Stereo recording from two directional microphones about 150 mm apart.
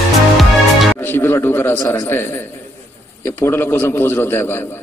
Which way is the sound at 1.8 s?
15° left (ahead or behind).